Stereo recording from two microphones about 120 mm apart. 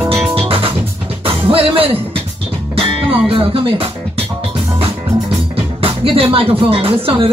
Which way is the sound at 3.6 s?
50° right (ahead or behind).